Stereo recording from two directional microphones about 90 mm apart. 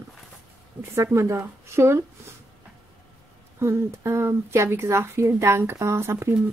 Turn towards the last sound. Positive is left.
turn(degrees=-30)  # may be behind; listen again after turning